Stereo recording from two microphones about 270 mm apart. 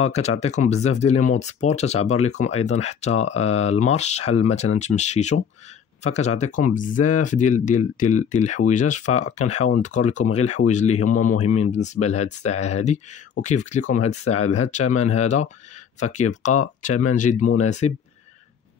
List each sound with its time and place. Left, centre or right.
0.0 s speech: left
11.0 s speech: left
11.7 s speech: left